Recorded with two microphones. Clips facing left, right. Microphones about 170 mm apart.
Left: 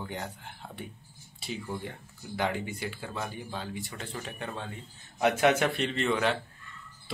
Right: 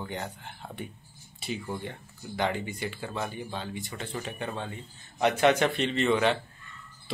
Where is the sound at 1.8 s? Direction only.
5° left (ahead or behind).